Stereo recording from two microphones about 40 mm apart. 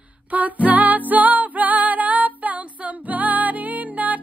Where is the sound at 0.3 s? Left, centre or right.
Right.